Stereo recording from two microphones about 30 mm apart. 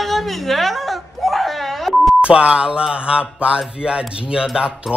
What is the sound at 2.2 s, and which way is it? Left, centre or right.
Speech, right.